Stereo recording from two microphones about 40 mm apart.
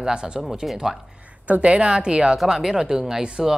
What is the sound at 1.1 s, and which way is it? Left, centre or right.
A woman's voice, right.